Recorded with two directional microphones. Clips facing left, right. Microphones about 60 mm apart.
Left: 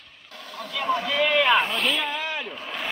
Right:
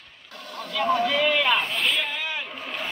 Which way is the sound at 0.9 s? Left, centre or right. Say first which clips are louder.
Even; centre.